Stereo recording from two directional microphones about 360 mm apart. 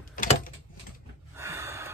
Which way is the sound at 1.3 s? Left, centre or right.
Centre.